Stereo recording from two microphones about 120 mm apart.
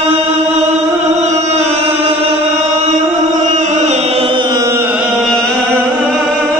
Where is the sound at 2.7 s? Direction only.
70° right (ahead or behind).